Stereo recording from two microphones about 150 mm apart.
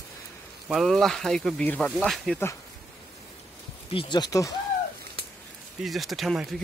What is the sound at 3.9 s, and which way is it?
Speech, 35° left (ahead or behind).